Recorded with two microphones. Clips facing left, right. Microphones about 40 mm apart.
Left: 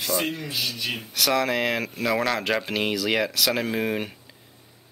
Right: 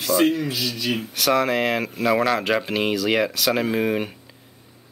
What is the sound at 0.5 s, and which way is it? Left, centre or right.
Speech, right.